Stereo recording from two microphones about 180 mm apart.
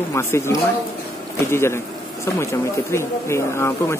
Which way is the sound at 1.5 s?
15° left (ahead or behind).